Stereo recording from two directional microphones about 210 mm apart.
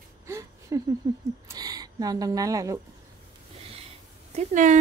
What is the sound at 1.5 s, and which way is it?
Speech, 20° right (ahead or behind).